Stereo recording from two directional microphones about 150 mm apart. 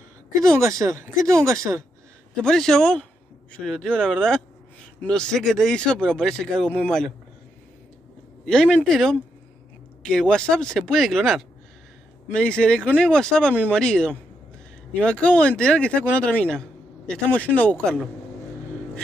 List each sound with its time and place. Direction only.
0.4 s a woman's voice: 20° right (ahead or behind)
2.4 s speech: 5° left (ahead or behind)
8.5 s speech: 5° left (ahead or behind)
12.3 s speech: 5° left (ahead or behind)